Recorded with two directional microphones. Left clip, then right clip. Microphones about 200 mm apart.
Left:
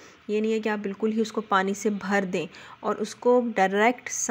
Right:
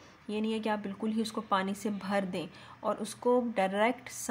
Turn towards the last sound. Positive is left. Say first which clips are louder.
# left 7 dB
turn(degrees=25)  # may be behind; listen again after turning